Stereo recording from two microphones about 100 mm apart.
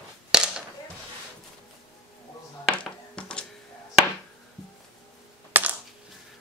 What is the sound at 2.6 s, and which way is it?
Music, 10° left (ahead or behind).